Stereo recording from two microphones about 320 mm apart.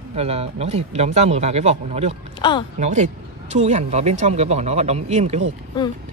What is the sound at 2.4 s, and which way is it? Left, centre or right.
Speech, centre.